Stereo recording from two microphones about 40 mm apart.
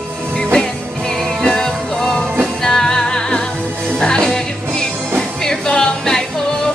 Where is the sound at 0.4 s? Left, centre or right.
Centre.